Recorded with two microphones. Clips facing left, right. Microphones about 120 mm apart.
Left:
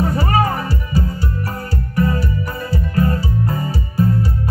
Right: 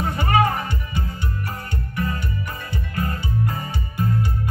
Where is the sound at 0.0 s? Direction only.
35° left (ahead or behind).